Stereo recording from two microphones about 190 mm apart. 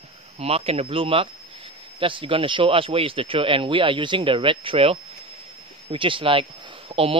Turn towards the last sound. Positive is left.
turn(degrees=-30)  # may be behind; listen again after turning